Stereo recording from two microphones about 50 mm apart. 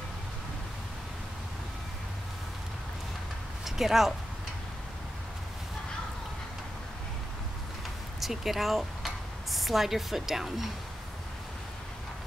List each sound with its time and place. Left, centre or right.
3.6 s speech: centre
8.2 s speech: centre